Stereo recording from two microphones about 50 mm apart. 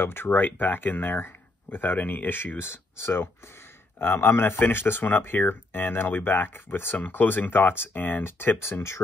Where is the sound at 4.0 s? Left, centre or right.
Left.